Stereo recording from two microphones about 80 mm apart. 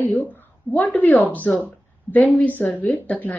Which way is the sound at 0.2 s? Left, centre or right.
Left.